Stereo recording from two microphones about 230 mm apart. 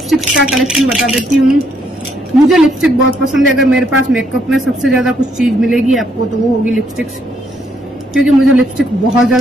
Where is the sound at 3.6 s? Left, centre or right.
Centre.